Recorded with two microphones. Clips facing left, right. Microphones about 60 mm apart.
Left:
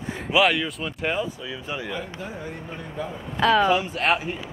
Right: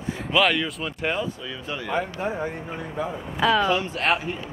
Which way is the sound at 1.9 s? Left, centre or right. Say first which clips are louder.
Right 6 dB; right.